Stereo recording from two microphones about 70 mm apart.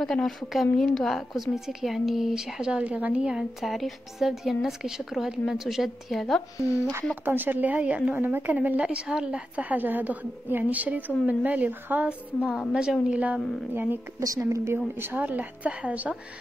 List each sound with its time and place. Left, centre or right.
0.0 s a woman's voice: centre
3.6 s a woman's voice: centre
7.2 s a woman's voice: right
12.4 s a woman's voice: centre
14.2 s speech: right
15.0 s a woman's voice: right